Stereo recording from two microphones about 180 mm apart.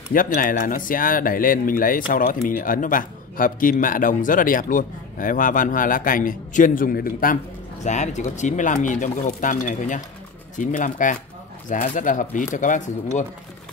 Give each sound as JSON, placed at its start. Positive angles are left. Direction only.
{"t": 0.1, "sound": "speech", "side_deg": 50}
{"t": 7.8, "sound": "speech", "side_deg": 40}